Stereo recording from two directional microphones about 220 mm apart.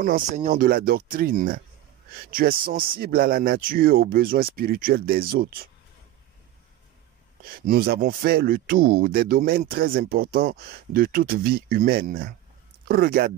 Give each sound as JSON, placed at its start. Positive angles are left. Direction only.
{"t": 0.0, "sound": "speech", "side_deg": -40}
{"t": 7.5, "sound": "speech", "side_deg": -40}